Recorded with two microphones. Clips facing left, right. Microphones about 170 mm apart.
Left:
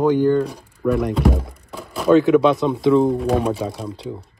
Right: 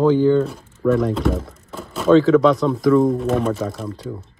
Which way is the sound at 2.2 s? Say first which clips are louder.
Right 1 dB; 20° left (ahead or behind).